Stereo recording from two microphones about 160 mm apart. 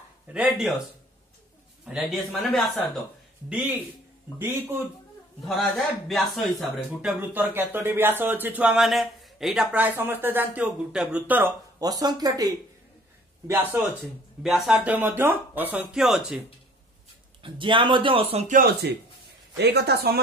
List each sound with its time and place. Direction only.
0.3 s a man's voice: 5° right (ahead or behind)
1.9 s a man's voice: centre (ahead or behind)
3.4 s speech: 5° right (ahead or behind)
5.4 s a man's voice: centre (ahead or behind)
11.8 s speech: 25° right (ahead or behind)
13.5 s speech: 15° right (ahead or behind)
14.4 s speech: centre (ahead or behind)
17.4 s a man's voice: 30° right (ahead or behind)
18.6 s speech: 85° right